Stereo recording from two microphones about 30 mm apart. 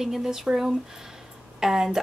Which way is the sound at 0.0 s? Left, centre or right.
Centre.